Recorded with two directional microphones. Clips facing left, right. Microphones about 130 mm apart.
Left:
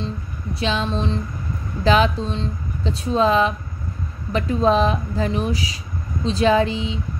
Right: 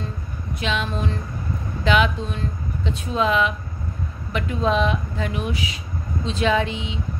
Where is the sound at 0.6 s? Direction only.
30° left (ahead or behind).